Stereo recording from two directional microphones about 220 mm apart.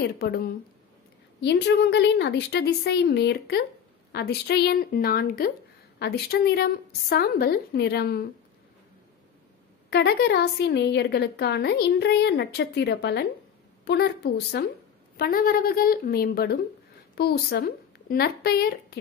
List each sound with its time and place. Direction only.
0.0 s a woman's voice: 45° left (ahead or behind)
9.8 s a woman's voice: 50° left (ahead or behind)